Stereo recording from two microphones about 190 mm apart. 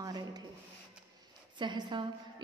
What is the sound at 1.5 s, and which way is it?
Speech, 25° right (ahead or behind).